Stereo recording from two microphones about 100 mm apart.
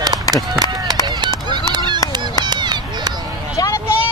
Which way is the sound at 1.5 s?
50° right (ahead or behind).